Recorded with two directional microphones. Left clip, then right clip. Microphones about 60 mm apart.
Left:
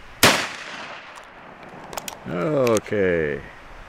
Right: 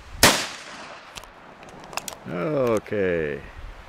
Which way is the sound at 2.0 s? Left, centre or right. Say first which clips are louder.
Left 2 dB; centre.